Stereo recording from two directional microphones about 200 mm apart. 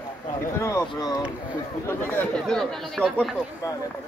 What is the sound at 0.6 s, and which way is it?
Speech, 15° left (ahead or behind).